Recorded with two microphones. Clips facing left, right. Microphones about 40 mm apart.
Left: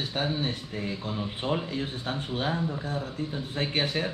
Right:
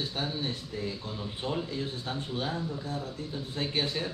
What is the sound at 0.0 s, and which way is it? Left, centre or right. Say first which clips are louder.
A man's voice: left 4 dB; left.